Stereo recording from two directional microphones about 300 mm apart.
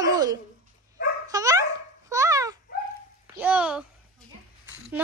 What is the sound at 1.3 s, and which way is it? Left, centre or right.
Dog, centre.